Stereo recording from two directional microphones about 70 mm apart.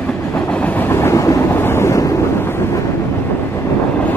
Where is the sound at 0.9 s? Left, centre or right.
Left.